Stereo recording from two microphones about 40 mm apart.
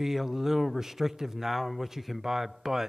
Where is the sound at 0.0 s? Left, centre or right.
Centre.